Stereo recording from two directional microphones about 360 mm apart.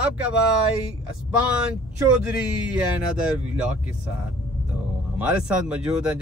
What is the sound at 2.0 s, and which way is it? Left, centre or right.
Speech, centre.